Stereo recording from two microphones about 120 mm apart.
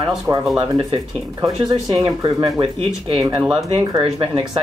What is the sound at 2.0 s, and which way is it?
Speech, 35° right (ahead or behind).